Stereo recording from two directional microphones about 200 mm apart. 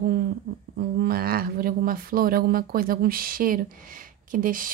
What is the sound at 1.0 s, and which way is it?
Speech, 50° right (ahead or behind).